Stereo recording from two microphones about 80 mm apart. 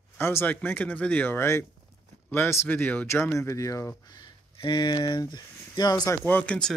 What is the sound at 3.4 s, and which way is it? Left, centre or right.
Speech, left.